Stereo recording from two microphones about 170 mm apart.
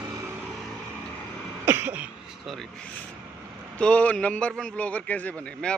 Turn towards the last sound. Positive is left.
turn(degrees=5)  # may be behind; listen again after turning